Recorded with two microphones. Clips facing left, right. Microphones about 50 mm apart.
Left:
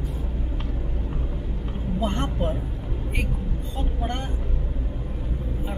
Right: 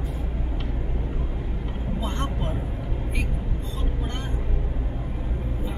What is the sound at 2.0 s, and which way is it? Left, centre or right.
Music, left.